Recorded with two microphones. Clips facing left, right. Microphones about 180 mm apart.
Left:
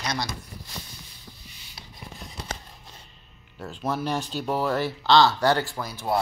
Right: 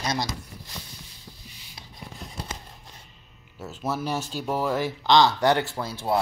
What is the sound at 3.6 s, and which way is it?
Speech, 5° right (ahead or behind).